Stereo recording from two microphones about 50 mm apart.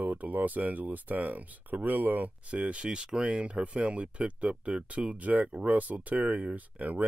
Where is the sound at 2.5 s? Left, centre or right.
Right.